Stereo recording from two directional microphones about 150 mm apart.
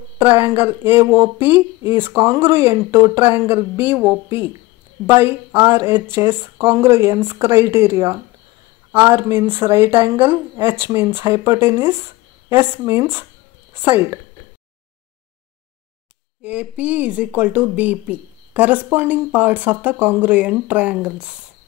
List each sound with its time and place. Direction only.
0.2 s speech: 15° right (ahead or behind)
16.4 s speech: 10° right (ahead or behind)